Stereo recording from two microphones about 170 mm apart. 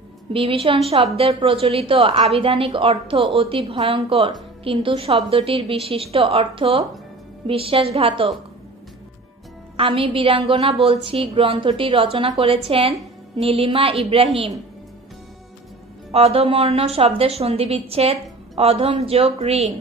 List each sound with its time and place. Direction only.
0.3 s a woman's voice: 35° right (ahead or behind)
9.8 s a woman's voice: 30° right (ahead or behind)
16.1 s a woman's voice: 35° right (ahead or behind)